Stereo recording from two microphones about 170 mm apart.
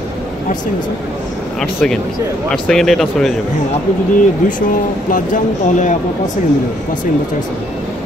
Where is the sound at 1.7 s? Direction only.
5° left (ahead or behind).